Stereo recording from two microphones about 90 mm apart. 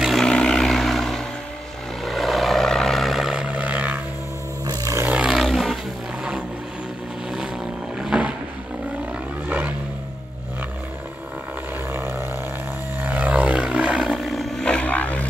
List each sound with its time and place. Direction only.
0.0 s vehicle: 5° left (ahead or behind); by 4.0 s 20° right (ahead or behind)
4.6 s roar: 35° right (ahead or behind)
5.0 s vehicle: 10° right (ahead or behind)
8.0 s boat: 10° right (ahead or behind)
9.5 s vehicle: 20° right (ahead or behind)
11.9 s vehicle: 30° right (ahead or behind)
13.0 s vehicle: 15° right (ahead or behind); by 15.2 s 15° left (ahead or behind)